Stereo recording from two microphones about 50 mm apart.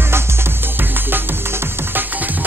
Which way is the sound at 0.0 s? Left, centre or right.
Right.